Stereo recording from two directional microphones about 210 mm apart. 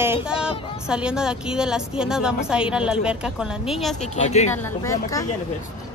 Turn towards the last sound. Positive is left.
turn(degrees=15)  # may be behind; listen again after turning